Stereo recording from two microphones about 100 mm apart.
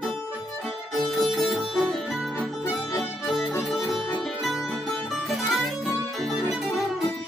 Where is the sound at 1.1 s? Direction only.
Centre (ahead or behind).